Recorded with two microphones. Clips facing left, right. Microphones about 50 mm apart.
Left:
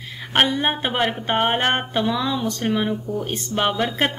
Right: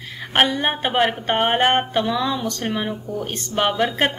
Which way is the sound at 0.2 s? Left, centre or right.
Centre.